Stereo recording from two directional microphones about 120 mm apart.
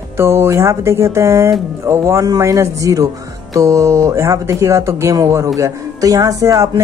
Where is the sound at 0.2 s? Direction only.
20° right (ahead or behind).